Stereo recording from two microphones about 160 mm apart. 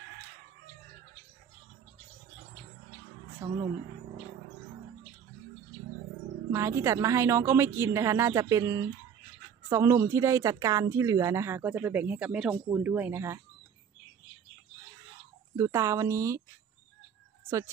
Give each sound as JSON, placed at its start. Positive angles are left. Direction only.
{"t": 3.4, "sound": "speech", "side_deg": -15}
{"t": 6.5, "sound": "speech", "side_deg": -20}
{"t": 15.5, "sound": "speech", "side_deg": -15}